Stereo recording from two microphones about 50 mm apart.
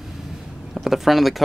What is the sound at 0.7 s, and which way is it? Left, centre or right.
Speech, centre.